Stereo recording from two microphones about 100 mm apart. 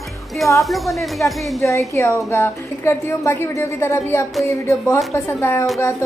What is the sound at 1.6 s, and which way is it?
A woman's voice, 30° left (ahead or behind).